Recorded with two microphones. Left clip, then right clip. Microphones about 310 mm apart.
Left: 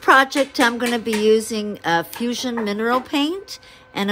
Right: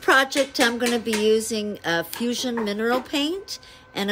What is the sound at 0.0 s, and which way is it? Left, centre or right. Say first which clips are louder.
Speech: left 4 dB; centre.